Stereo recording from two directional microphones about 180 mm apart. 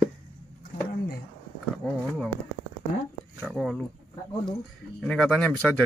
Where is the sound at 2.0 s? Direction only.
Centre (ahead or behind).